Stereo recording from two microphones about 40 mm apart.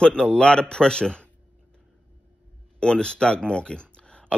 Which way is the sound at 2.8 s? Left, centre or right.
Left.